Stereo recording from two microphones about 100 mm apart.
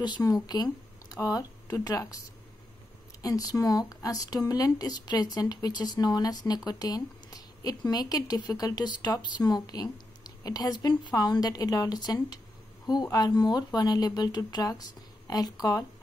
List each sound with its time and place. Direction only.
0.2 s speech: 40° left (ahead or behind)